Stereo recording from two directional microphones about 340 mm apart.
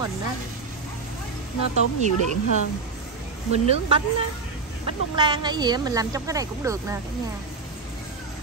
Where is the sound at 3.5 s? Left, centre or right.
Centre.